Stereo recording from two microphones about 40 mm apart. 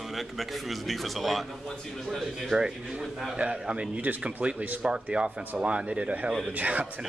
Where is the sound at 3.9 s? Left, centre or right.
Right.